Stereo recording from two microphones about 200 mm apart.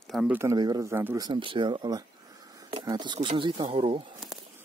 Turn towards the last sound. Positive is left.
turn(degrees=-25)  # may be behind; listen again after turning